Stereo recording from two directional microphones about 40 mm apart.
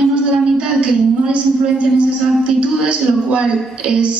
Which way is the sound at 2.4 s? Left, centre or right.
Right.